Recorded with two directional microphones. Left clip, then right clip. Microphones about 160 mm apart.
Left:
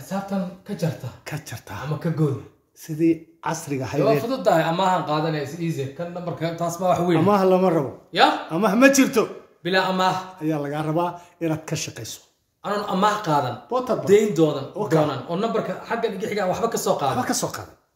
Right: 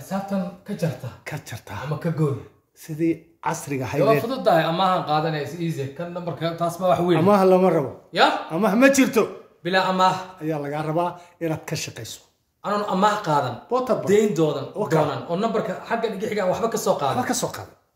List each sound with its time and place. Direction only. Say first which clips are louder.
0.1 s a man's voice: right 1 dB; 5° right (ahead or behind)
4.2 s speech: even; 15° left (ahead or behind)
6.6 s speech: right 1 dB; 15° left (ahead or behind)
7.2 s speech: right 3 dB; 15° right (ahead or behind)
8.1 s a man's voice: left 1 dB; centre (ahead or behind)
13.7 s speech: right 1 dB; 15° right (ahead or behind)
14.0 s a man's voice: left 5 dB; 5° left (ahead or behind)